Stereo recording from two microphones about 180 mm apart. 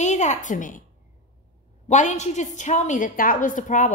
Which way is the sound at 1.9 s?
40° left (ahead or behind).